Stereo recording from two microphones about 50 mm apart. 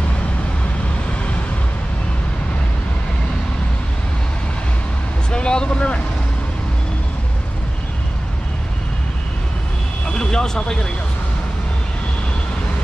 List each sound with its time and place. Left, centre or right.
5.3 s vehicle: centre
10.0 s vehicle: centre